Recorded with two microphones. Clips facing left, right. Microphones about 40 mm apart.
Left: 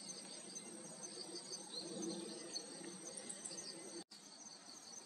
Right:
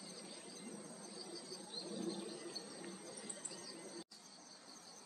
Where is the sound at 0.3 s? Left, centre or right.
Right.